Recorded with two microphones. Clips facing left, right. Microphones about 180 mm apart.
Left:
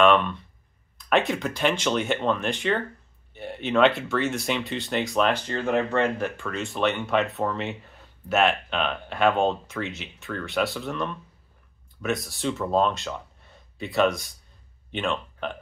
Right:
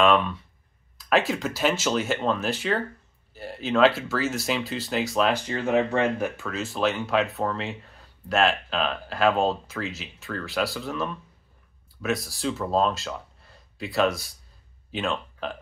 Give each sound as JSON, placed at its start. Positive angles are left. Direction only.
{"t": 0.0, "sound": "speech", "side_deg": 0}